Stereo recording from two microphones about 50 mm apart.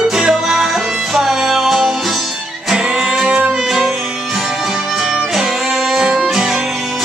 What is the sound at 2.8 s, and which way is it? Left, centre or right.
Music, centre.